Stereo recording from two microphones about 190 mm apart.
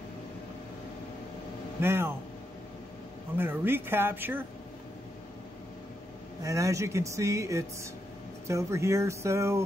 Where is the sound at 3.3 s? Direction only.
10° right (ahead or behind).